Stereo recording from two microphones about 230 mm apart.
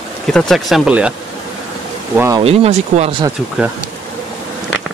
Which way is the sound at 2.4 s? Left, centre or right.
Right.